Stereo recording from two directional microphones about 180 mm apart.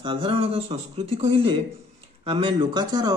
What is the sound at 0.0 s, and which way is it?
A man's voice, 30° right (ahead or behind).